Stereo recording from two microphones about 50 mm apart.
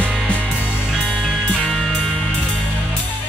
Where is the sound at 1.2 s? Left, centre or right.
Centre.